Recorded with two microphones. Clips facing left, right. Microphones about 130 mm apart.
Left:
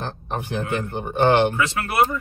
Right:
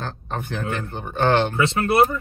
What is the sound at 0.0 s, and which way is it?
A man's voice, 15° left (ahead or behind).